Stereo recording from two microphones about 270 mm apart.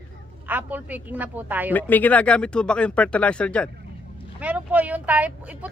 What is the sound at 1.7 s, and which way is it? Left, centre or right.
Speech, centre.